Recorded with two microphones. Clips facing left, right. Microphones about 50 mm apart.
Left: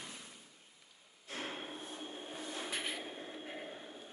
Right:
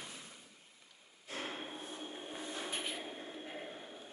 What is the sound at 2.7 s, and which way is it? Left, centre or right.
Vehicle, left.